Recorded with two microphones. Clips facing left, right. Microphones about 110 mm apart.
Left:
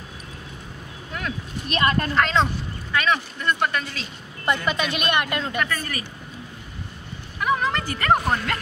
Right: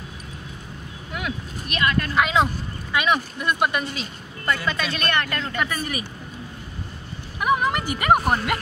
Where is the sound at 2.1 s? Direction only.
10° right (ahead or behind).